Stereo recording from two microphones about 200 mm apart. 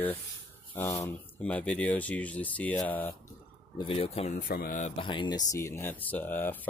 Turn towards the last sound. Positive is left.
turn(degrees=10)  # may be behind; listen again after turning